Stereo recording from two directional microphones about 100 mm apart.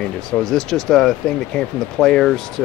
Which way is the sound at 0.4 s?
5° left (ahead or behind).